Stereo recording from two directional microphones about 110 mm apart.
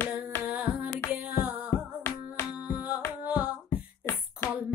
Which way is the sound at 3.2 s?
10° right (ahead or behind).